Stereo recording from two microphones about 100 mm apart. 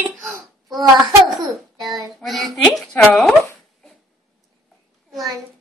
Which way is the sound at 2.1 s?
Centre (ahead or behind).